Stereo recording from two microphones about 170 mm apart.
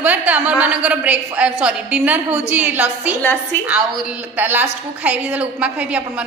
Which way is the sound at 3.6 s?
5° right (ahead or behind).